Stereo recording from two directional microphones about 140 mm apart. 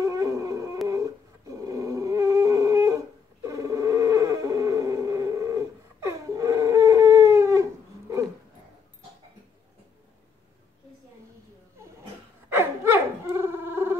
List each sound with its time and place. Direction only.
0.0 s dog: 20° right (ahead or behind)
3.4 s music: 20° right (ahead or behind)
12.4 s telephone bell ringing: 15° right (ahead or behind)